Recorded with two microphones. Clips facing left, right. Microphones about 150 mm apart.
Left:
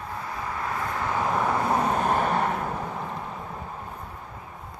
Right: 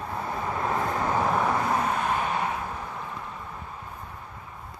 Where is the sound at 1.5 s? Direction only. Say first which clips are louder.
Left 2 dB; 30° left (ahead or behind); by 2.7 s 50° left (ahead or behind).